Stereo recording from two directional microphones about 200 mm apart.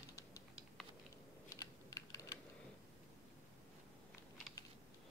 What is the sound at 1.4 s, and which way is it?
Computer keyboard, 15° left (ahead or behind).